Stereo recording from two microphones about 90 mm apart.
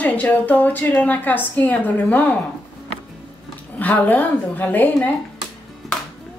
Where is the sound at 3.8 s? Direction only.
20° left (ahead or behind).